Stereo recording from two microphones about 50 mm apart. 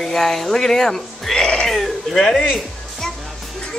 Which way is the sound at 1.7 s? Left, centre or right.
Centre.